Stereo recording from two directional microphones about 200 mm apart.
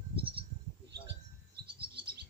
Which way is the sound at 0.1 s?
25° right (ahead or behind).